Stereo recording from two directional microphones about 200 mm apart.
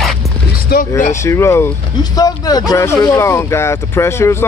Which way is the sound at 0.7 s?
50° left (ahead or behind).